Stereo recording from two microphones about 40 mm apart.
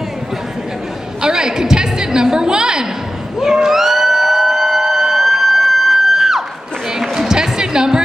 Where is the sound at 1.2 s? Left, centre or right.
Centre.